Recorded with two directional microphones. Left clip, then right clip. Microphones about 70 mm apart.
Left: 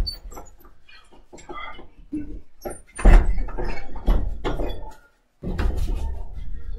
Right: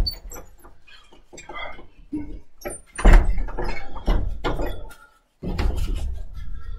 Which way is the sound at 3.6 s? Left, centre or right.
Centre.